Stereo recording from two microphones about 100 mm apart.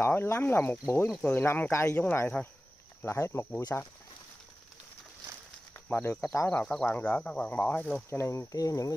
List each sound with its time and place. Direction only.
0.0 s speech: 25° left (ahead or behind)
6.0 s speech: 30° left (ahead or behind)
6.6 s speech: 10° left (ahead or behind)
8.1 s speech: 30° left (ahead or behind)